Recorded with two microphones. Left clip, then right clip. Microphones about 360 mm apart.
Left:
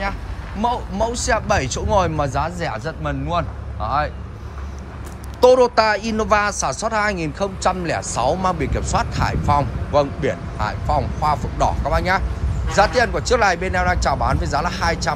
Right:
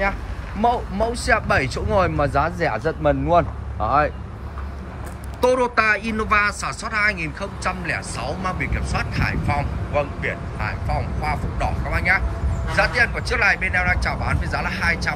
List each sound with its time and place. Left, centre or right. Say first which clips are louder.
0.6 s speech: right 1 dB; centre
5.4 s speech: left 5 dB; centre
9.6 s a man's voice: left 5 dB; left
11.2 s speech: left 6 dB; centre